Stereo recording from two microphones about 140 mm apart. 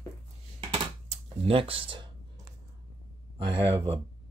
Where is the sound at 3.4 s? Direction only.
40° right (ahead or behind).